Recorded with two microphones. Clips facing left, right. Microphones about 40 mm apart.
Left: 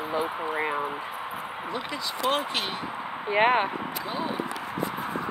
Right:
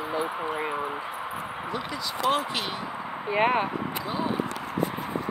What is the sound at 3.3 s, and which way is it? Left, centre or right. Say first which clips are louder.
Speech: left 2 dB; left.